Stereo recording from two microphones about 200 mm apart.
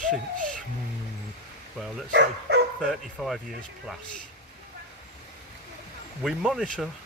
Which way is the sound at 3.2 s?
Centre (ahead or behind).